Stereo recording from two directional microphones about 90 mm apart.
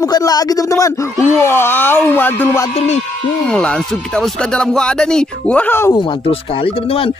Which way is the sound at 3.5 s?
10° left (ahead or behind).